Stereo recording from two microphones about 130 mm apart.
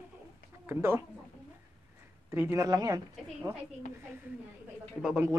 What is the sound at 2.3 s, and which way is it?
Speech, 20° right (ahead or behind).